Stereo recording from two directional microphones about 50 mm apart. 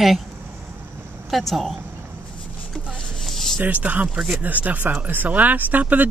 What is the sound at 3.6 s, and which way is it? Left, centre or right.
Speech, right.